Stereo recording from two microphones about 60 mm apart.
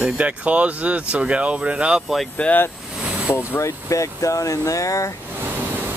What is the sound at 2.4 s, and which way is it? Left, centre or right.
Speech, left.